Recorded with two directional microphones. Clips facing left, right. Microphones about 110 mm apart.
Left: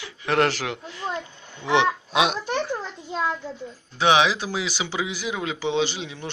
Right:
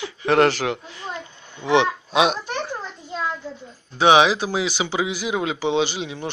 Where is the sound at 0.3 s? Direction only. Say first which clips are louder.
Right 4 dB; centre (ahead or behind).